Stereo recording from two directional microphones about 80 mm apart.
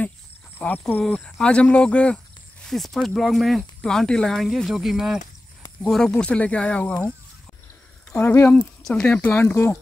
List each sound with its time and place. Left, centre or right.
0.6 s speech: centre
1.0 s speech: centre
2.6 s speech: centre
5.9 s speech: centre
8.2 s speech: left
8.5 s speech: centre
9.1 s speech: left